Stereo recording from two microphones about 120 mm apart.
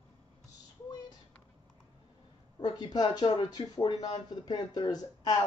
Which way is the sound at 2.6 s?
35° left (ahead or behind).